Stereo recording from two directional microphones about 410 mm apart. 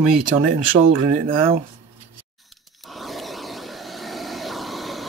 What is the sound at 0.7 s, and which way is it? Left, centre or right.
Speech, right.